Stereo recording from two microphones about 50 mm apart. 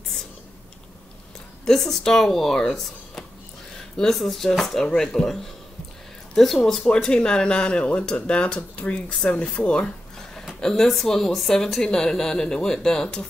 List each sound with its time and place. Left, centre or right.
1.7 s a woman's voice: centre
10.6 s a woman's voice: centre